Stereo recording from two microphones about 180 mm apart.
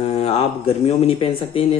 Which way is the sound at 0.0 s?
35° left (ahead or behind).